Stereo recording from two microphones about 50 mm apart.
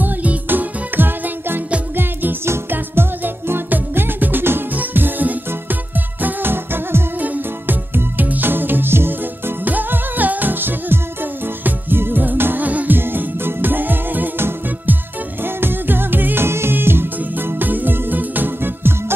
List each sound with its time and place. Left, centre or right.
0.0 s music: right
0.5 s music: right
2.7 s music: right
9.7 s music: right
16.4 s music: right